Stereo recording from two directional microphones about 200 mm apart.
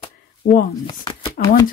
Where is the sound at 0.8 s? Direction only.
25° left (ahead or behind).